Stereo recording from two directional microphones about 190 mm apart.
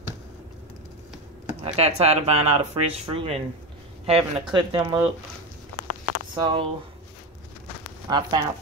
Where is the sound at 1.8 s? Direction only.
35° right (ahead or behind).